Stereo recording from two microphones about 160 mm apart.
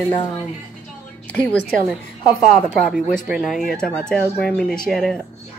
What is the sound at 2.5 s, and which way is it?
Speech, centre (ahead or behind).